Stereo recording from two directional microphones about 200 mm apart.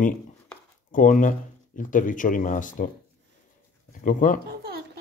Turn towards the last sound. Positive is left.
turn(degrees=40)  # may be behind; listen again after turning